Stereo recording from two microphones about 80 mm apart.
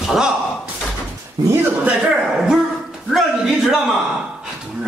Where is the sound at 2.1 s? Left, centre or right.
Centre.